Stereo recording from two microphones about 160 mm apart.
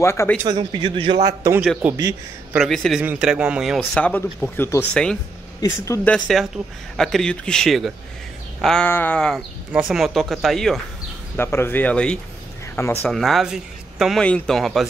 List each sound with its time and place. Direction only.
0.0 s speech: 15° left (ahead or behind)
0.5 s a man's voice: 30° right (ahead or behind)
1.6 s speech: 5° right (ahead or behind); by 4.8 s 15° left (ahead or behind)
6.0 s speech: 5° left (ahead or behind)
9.7 s speech: 5° right (ahead or behind)
11.3 s speech: 15° left (ahead or behind)